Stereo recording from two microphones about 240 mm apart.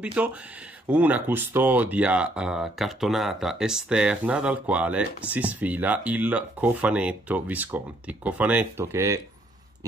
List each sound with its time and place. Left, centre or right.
0.0 s speech: centre